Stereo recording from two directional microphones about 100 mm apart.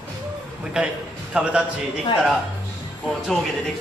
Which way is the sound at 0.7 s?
10° right (ahead or behind).